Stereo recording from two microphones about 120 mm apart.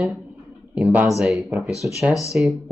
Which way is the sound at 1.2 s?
5° right (ahead or behind).